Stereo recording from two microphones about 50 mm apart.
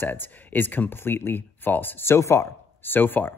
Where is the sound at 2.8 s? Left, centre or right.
Left.